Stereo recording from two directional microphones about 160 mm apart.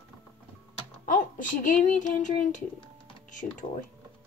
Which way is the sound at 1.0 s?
55° left (ahead or behind).